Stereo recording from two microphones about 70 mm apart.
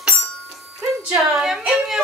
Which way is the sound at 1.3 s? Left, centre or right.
Centre.